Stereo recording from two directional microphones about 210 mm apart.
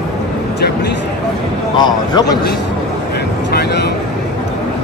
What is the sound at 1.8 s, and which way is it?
Speech, 20° left (ahead or behind).